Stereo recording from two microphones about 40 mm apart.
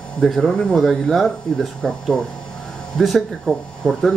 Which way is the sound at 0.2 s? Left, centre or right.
Centre.